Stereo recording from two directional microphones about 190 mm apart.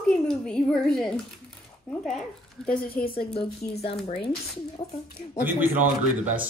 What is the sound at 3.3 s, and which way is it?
A woman's voice, 30° left (ahead or behind).